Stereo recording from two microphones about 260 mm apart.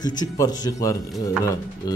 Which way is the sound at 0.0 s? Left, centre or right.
Centre.